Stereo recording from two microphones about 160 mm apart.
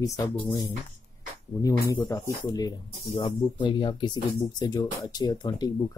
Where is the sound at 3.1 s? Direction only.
30° left (ahead or behind).